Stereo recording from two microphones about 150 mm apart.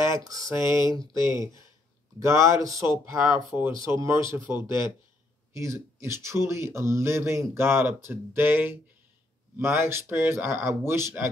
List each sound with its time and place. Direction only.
0.0 s speech: 20° right (ahead or behind)
1.1 s speech: 30° left (ahead or behind)
2.1 s speech: 20° right (ahead or behind)